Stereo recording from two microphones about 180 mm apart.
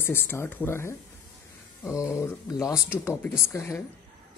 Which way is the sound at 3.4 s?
15° left (ahead or behind).